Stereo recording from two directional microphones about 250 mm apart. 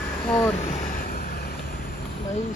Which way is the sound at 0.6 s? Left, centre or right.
Left.